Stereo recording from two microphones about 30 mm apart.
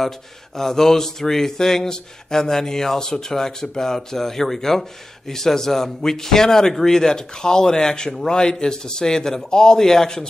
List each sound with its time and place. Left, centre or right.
0.6 s speech: centre